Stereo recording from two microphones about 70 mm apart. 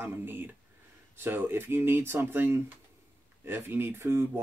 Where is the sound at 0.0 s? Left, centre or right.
Right.